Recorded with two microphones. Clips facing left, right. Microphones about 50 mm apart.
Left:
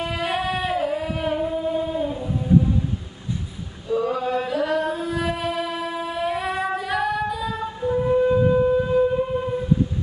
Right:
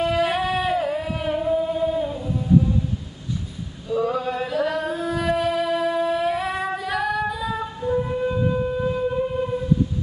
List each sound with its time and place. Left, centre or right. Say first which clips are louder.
0.0 s a sound: right 4 dB; centre
3.9 s chant: left 1 dB; centre
7.8 s wind instrument: left 4 dB; centre